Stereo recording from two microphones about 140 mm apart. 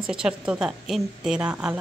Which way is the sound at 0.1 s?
5° right (ahead or behind).